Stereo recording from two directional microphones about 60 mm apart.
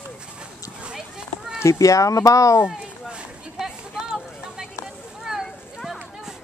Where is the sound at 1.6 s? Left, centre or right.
Left.